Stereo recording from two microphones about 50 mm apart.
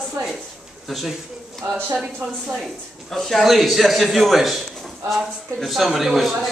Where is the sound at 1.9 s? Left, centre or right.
Centre.